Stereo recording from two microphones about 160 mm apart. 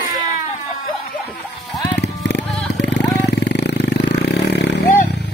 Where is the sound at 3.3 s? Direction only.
90° left.